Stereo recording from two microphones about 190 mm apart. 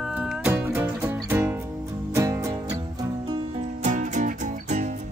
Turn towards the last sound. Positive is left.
turn(degrees=-40)  # may be behind; listen again after turning